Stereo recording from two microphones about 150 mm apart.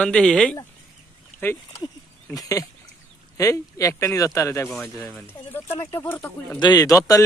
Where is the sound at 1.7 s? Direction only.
20° left (ahead or behind).